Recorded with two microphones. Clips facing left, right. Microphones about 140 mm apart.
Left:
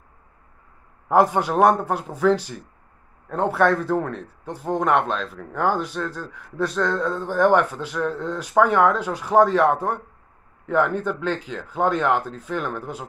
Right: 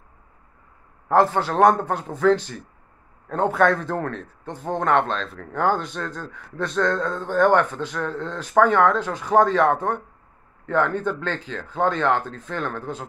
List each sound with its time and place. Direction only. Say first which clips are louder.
1.0 s a man's voice: left 1 dB; 15° left (ahead or behind)